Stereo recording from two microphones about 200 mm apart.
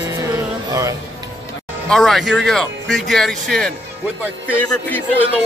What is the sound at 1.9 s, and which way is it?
Speech, centre (ahead or behind).